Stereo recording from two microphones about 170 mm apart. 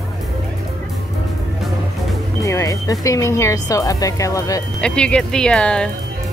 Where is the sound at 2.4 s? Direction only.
20° left (ahead or behind).